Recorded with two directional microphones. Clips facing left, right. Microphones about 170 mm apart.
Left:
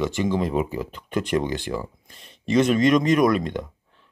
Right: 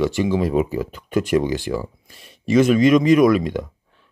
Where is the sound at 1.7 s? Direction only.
10° right (ahead or behind).